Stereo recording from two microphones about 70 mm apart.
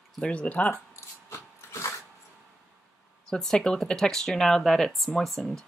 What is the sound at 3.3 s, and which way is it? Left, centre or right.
Speech, centre.